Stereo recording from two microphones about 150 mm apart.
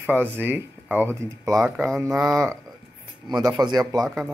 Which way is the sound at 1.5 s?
Centre (ahead or behind).